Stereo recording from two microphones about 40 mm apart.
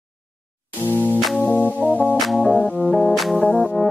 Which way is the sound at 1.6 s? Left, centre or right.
Left.